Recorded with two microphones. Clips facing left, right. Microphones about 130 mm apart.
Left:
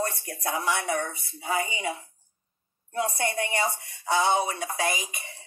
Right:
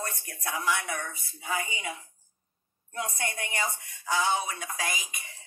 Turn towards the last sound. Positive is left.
turn(degrees=35)  # may be behind; listen again after turning